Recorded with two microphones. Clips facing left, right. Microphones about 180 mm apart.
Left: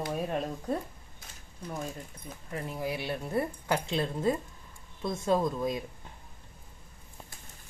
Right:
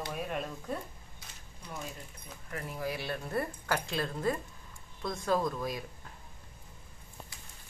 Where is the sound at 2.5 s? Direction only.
20° left (ahead or behind).